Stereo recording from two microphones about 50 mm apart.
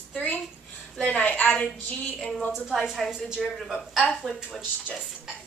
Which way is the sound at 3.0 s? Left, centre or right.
Centre.